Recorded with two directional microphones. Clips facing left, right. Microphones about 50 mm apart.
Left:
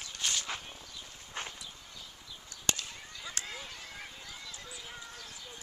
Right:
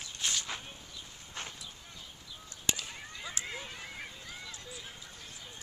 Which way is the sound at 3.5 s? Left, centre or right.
Right.